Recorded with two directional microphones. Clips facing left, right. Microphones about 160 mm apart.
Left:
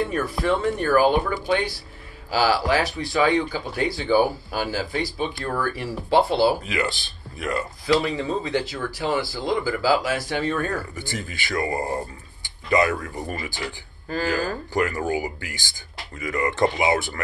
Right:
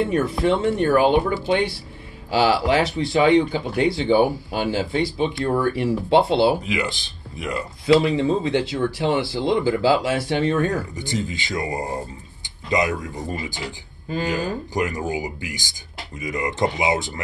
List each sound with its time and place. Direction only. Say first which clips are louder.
0.0 s speech: right 4 dB; 25° right (ahead or behind)
2.3 s speech: right 3 dB; 25° right (ahead or behind)